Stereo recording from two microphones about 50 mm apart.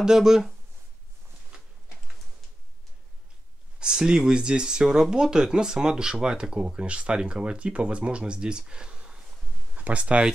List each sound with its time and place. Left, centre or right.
0.0 s speech: centre
3.8 s speech: centre
9.8 s speech: right